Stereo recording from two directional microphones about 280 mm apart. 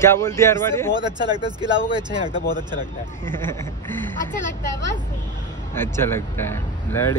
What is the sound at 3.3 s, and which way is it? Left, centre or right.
Speech, centre.